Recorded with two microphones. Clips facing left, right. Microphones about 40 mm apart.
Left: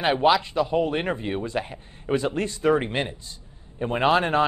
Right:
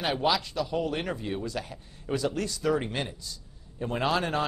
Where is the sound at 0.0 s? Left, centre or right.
Left.